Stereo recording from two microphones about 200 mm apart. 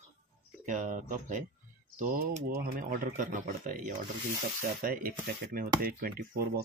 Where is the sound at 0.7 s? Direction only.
40° right (ahead or behind).